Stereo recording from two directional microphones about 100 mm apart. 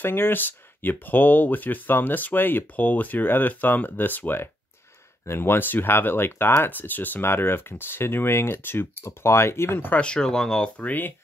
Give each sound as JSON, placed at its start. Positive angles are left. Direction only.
{"t": 0.0, "sound": "speech", "side_deg": 20}
{"t": 9.9, "sound": "speech", "side_deg": 10}